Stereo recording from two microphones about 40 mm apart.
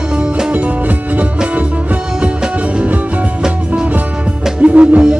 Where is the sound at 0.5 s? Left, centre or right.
Right.